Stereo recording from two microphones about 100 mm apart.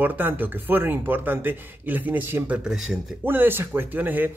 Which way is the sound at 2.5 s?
5° right (ahead or behind).